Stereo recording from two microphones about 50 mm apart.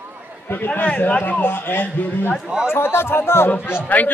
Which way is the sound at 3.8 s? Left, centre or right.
Left.